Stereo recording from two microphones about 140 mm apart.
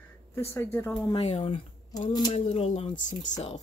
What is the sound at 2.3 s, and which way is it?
Speech, 50° left (ahead or behind).